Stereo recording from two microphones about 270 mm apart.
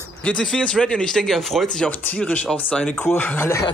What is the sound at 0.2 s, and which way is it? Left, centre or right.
Speech, centre.